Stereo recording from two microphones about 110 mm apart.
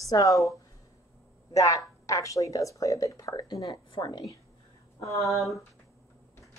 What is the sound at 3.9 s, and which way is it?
Speech, 45° left (ahead or behind).